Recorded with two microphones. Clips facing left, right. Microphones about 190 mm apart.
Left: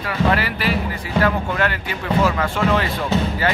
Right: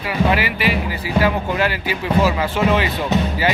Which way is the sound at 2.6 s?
15° right (ahead or behind).